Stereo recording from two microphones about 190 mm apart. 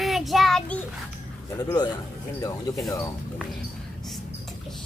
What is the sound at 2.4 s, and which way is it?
Speech, 20° left (ahead or behind).